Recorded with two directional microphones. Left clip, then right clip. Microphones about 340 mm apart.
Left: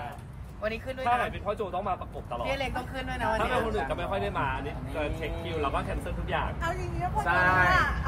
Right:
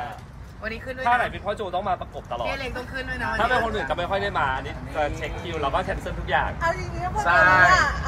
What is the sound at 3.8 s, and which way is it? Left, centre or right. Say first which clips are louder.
Speech: right 6 dB; right.